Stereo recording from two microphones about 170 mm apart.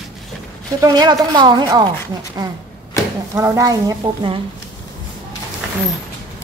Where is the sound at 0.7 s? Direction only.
20° right (ahead or behind).